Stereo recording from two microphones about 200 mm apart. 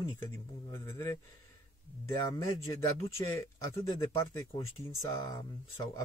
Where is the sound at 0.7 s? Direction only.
15° left (ahead or behind).